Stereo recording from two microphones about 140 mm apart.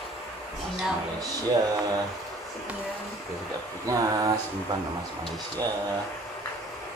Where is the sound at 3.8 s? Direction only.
25° right (ahead or behind).